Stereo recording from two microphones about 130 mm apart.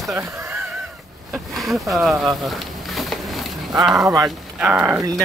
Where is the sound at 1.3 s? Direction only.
Centre (ahead or behind).